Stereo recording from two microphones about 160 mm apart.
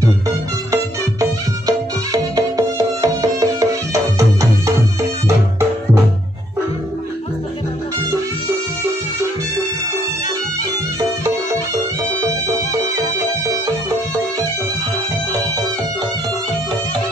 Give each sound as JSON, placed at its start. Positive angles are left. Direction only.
{"t": 1.7, "sound": "music", "side_deg": -25}
{"t": 11.0, "sound": "music", "side_deg": -20}